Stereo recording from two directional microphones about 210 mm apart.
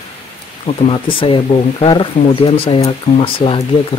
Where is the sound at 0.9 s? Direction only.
25° left (ahead or behind).